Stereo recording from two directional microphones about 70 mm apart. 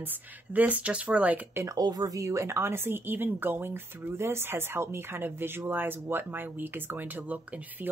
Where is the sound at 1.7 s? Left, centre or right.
Right.